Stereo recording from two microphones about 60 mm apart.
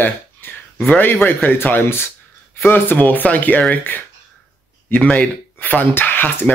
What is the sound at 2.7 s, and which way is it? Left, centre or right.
A man's voice, left.